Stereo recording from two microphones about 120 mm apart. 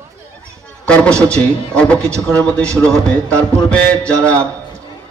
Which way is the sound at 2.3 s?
10° left (ahead or behind).